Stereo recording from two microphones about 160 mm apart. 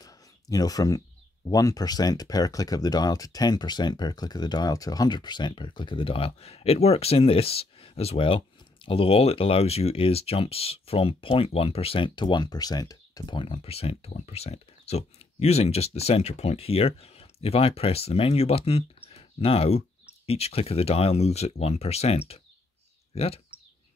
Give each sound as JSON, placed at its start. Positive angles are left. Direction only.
{"t": 0.0, "sound": "speech", "side_deg": 25}